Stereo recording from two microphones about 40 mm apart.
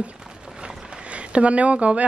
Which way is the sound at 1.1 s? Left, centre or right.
Right.